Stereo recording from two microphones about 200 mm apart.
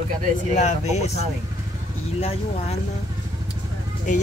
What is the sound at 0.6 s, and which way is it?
Speech, 35° left (ahead or behind).